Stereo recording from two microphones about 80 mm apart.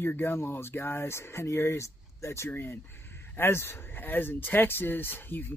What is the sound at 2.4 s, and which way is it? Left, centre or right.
Speech, left.